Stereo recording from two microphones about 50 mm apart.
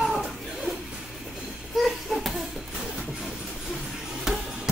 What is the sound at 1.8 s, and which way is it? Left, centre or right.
Bouncing, centre.